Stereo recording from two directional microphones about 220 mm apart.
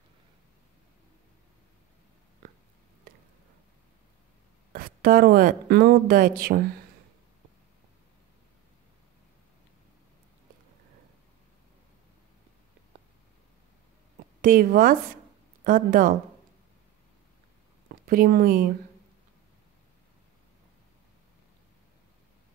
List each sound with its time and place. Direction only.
4.7 s speech: 40° right (ahead or behind)
14.4 s speech: 40° right (ahead or behind)
18.0 s speech: 40° right (ahead or behind)